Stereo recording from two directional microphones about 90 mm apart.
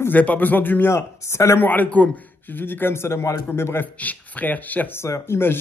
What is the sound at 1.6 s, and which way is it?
A man's voice, 15° left (ahead or behind).